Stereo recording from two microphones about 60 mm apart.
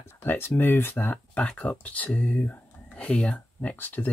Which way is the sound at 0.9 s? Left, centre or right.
Left.